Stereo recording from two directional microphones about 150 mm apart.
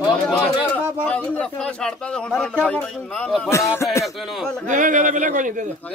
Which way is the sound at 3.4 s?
20° left (ahead or behind).